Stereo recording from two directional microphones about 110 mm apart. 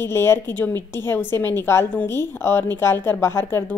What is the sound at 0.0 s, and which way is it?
A woman's voice, 20° left (ahead or behind).